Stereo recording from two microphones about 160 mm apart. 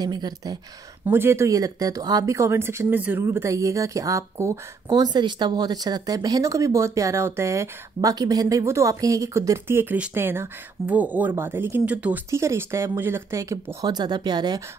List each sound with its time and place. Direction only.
0.0 s speech: 25° right (ahead or behind)
1.0 s speech: 15° right (ahead or behind)